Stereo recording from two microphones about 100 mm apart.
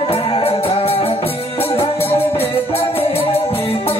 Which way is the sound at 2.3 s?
85° left.